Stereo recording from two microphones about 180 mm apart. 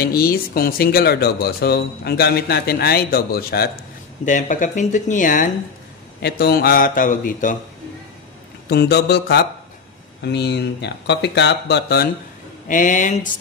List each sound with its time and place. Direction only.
0.0 s speech: 55° left (ahead or behind)
4.3 s a man's voice: 45° left (ahead or behind)
6.2 s a man's voice: 60° left (ahead or behind)
8.6 s speech: 65° left (ahead or behind)
12.6 s a man's voice: 45° left (ahead or behind)